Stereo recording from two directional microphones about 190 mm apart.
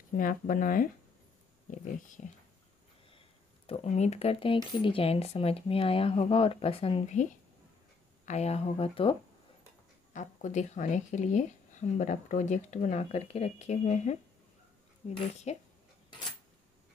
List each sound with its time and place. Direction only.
0.1 s speech: 45° left (ahead or behind)
3.1 s speech: 30° left (ahead or behind)
8.3 s speech: 35° left (ahead or behind)
10.1 s speech: 40° left (ahead or behind)